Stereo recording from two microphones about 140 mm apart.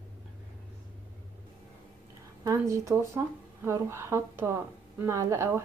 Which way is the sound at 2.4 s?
20° right (ahead or behind).